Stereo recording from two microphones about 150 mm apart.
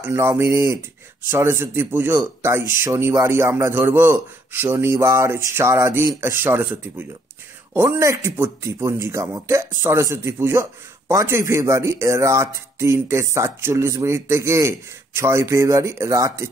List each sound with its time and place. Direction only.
0.0 s a man's voice: 20° right (ahead or behind)